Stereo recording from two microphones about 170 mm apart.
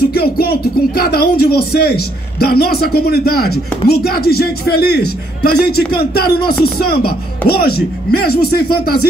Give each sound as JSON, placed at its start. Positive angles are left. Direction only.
{"t": 0.1, "sound": "speech", "side_deg": 65}